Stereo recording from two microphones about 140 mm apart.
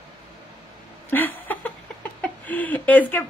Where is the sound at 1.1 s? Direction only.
15° left (ahead or behind).